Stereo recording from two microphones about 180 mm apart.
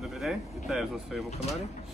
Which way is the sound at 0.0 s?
Centre (ahead or behind).